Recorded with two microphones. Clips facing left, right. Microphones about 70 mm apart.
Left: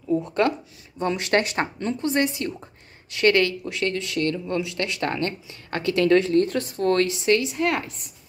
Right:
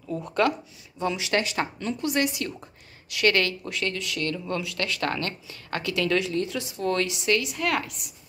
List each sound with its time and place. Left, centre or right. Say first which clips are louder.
0.4 s speech: right 3 dB; left
0.9 s speech: left 4 dB; left
1.6 s a woman's voice: left 3 dB; left